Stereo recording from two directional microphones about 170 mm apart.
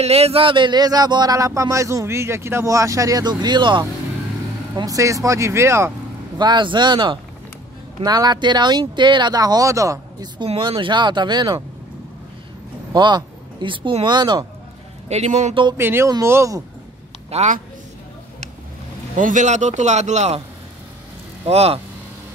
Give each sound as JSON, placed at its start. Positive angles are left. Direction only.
{"t": 0.0, "sound": "speech", "side_deg": -40}
{"t": 6.3, "sound": "speech", "side_deg": -25}
{"t": 10.4, "sound": "speech", "side_deg": -30}
{"t": 12.9, "sound": "speech", "side_deg": -25}
{"t": 15.0, "sound": "a man's voice", "side_deg": -40}
{"t": 15.8, "sound": "speech", "side_deg": -15}
{"t": 17.3, "sound": "a man's voice", "side_deg": -40}
{"t": 19.1, "sound": "a man's voice", "side_deg": -50}
{"t": 21.5, "sound": "speech", "side_deg": -35}